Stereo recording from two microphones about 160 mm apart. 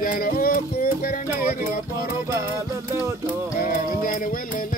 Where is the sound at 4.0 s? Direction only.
60° left (ahead or behind).